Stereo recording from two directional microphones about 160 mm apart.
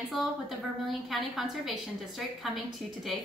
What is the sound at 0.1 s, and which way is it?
A woman's voice, centre (ahead or behind).